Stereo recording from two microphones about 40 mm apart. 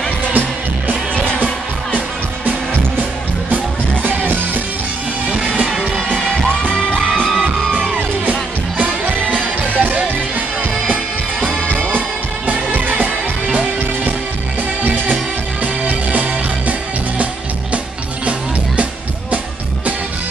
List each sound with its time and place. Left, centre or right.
0.3 s music: right
3.0 s music: right
5.8 s music: centre
6.5 s music: left
8.3 s music: right
12.4 s music: right
15.6 s music: right